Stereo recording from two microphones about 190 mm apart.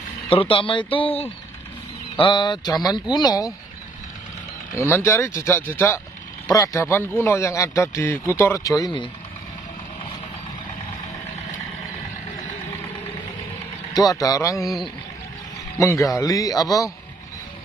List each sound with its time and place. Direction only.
0.3 s speech: 30° left (ahead or behind)
4.7 s a man's voice: 15° left (ahead or behind)
13.9 s speech: 20° left (ahead or behind)
15.8 s a man's voice: 15° left (ahead or behind)